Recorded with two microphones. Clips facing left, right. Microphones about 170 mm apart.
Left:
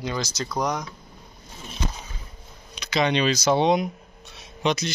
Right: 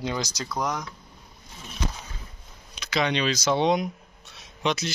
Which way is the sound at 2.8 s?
Centre (ahead or behind).